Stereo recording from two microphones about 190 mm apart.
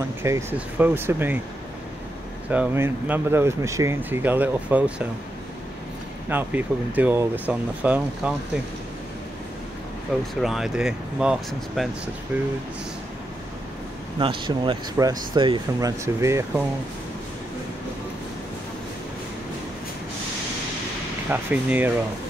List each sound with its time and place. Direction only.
0.2 s speech: 10° right (ahead or behind)
2.5 s speech: 10° right (ahead or behind)
6.2 s speech: 10° right (ahead or behind)
10.1 s speech: centre (ahead or behind)
14.2 s speech: 25° right (ahead or behind)
21.3 s speech: 10° right (ahead or behind)